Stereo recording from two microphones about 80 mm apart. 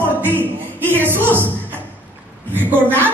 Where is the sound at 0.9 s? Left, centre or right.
Right.